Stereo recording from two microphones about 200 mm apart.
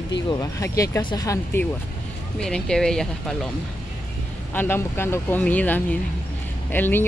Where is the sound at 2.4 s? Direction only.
5° left (ahead or behind).